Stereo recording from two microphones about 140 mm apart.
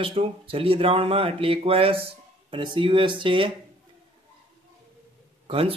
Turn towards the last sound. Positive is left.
turn(degrees=-40)  # may be behind; listen again after turning